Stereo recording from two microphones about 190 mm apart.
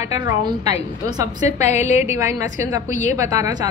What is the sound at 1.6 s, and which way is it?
Speech, 35° left (ahead or behind).